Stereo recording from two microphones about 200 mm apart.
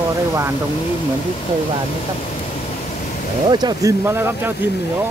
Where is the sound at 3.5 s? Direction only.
20° right (ahead or behind).